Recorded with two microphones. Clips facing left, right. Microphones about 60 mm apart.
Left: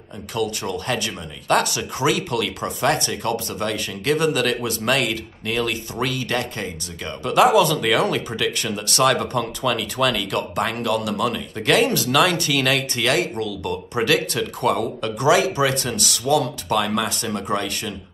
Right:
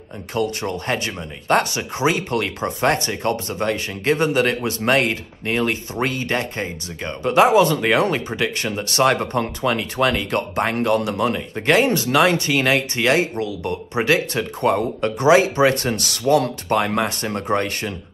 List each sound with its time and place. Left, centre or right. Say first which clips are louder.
0.3 s speech: right 2 dB; right